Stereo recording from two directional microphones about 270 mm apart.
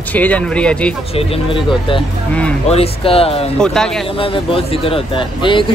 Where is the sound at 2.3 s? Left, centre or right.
Centre.